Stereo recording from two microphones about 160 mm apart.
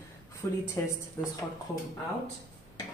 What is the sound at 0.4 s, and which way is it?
Speech, 15° left (ahead or behind).